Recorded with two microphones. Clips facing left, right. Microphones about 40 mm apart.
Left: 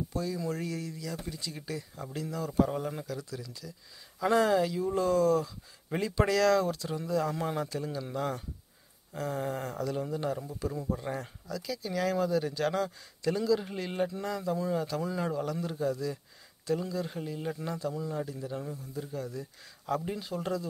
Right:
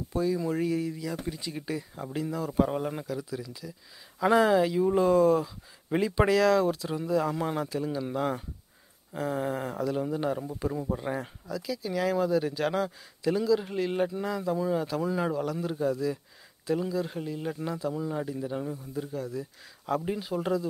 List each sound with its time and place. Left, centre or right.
0.1 s speech: centre
17.9 s a man's voice: right
19.1 s speech: centre
19.9 s speech: centre